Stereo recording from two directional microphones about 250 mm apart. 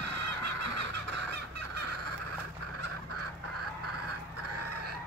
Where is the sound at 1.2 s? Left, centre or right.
Right.